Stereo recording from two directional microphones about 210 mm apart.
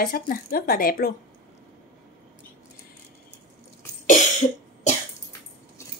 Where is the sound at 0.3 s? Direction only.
40° left (ahead or behind).